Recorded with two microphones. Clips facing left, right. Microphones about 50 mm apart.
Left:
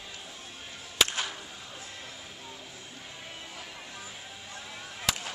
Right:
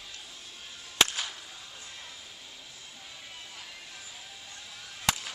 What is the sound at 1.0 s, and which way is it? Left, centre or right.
Whip, centre.